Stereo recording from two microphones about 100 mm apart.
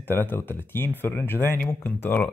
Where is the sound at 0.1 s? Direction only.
20° left (ahead or behind).